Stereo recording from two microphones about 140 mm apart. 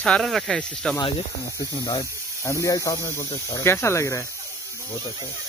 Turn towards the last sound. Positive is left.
turn(degrees=20)  # may be behind; listen again after turning